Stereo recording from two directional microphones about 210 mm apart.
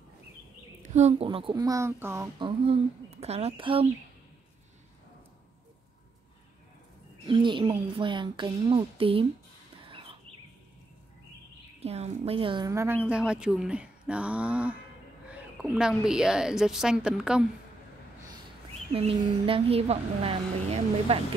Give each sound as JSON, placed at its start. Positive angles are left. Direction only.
{"t": 0.8, "sound": "a woman's voice", "side_deg": -35}
{"t": 2.3, "sound": "a woman's voice", "side_deg": -25}
{"t": 7.2, "sound": "a woman's voice", "side_deg": -25}
{"t": 9.8, "sound": "a sound", "side_deg": -25}
{"t": 11.8, "sound": "a woman's voice", "side_deg": -30}
{"t": 18.9, "sound": "a woman's voice", "side_deg": -25}